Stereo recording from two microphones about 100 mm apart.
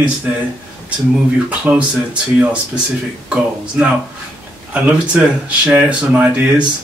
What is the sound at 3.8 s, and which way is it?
Speech, 15° right (ahead or behind).